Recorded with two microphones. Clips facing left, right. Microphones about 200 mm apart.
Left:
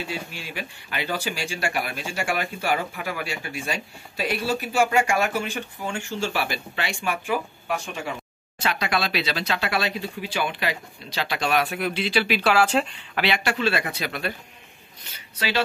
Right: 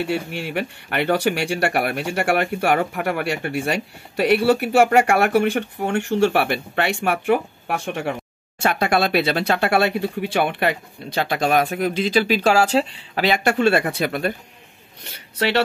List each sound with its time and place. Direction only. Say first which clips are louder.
0.0 s speech: right 9 dB; 65° right (ahead or behind); by 14.3 s 50° right (ahead or behind)
15.3 s speech: right 6 dB; 65° right (ahead or behind)